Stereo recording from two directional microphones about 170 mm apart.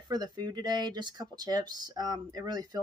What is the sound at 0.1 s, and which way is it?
Speech, 25° right (ahead or behind).